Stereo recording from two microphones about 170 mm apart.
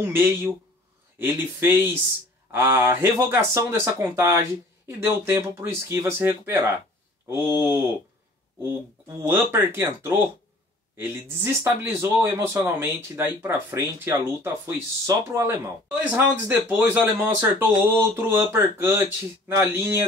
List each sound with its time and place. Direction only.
0.0 s speech: 15° right (ahead or behind)